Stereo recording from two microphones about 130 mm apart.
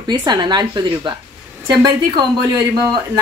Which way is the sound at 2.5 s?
35° right (ahead or behind).